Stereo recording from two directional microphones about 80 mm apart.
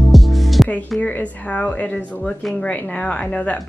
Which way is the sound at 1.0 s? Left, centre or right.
Centre.